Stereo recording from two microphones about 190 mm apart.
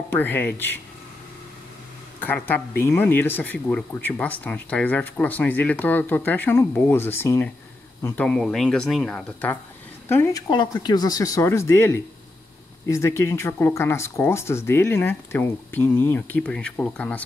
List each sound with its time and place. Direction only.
0.1 s speech: 10° left (ahead or behind)
2.1 s speech: 10° left (ahead or behind)
10.5 s speech: 25° left (ahead or behind); by 17.2 s 5° left (ahead or behind)